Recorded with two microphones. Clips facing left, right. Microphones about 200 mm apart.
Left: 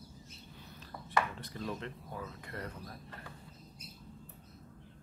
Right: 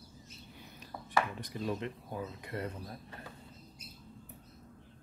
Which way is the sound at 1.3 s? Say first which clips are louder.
Right 4 dB; 15° right (ahead or behind).